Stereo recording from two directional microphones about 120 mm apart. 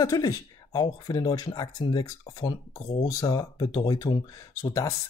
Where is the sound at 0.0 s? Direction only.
30° left (ahead or behind).